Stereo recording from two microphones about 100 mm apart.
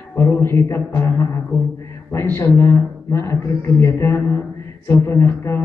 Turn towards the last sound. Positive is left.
turn(degrees=25)  # may be behind; listen again after turning